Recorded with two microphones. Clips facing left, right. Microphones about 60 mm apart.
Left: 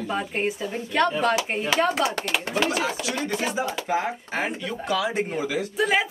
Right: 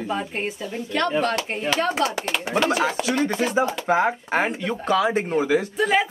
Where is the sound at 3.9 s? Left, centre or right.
Right.